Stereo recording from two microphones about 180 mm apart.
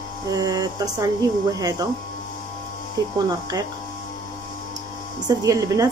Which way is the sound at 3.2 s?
20° right (ahead or behind).